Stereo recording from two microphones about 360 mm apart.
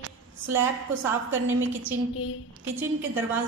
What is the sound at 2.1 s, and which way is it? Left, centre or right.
Speech, left.